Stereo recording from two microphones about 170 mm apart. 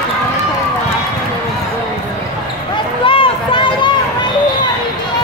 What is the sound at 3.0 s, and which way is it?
Run, 30° left (ahead or behind).